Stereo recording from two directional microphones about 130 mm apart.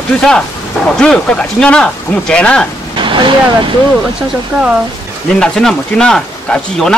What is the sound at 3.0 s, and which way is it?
Speech, 40° right (ahead or behind).